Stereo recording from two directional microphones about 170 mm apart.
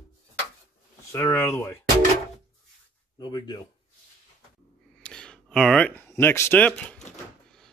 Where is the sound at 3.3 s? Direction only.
25° left (ahead or behind).